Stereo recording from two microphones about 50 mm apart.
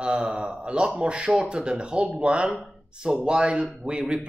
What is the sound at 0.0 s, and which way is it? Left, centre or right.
Speech, centre.